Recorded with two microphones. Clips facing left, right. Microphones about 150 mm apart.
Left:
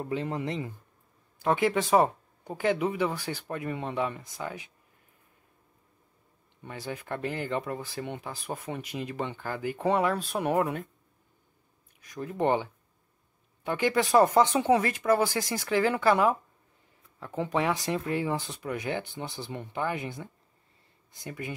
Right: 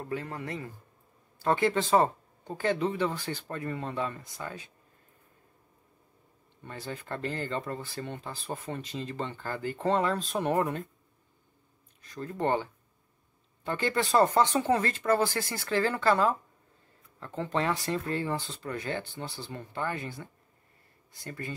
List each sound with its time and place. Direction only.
0.0 s a man's voice: 20° left (ahead or behind)
6.6 s speech: 15° left (ahead or behind)
12.0 s speech: 15° left (ahead or behind)